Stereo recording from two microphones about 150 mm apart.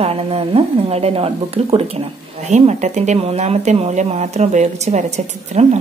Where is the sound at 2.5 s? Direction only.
50° right (ahead or behind).